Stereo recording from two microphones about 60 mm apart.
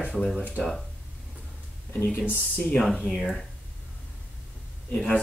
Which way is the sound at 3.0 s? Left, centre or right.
Centre.